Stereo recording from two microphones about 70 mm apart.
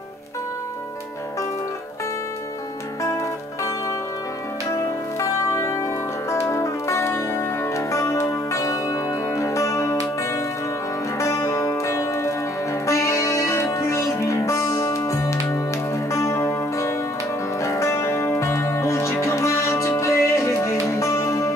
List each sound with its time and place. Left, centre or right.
4.7 s music: left
11.1 s music: left